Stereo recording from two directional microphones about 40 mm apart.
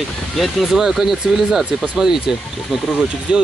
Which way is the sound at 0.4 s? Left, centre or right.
Centre.